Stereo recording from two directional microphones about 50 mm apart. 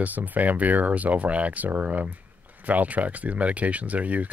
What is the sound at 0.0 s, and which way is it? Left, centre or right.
Speech, right.